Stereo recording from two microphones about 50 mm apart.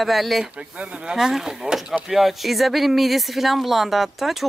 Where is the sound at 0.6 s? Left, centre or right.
Right.